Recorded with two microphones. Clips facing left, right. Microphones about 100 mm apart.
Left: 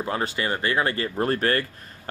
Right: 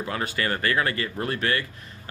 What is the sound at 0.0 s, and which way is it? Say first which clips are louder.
Speech: left 2 dB; 30° left (ahead or behind).